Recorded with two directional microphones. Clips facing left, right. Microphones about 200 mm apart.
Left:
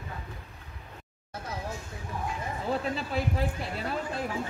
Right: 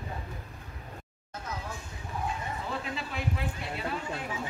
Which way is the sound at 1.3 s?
30° left (ahead or behind).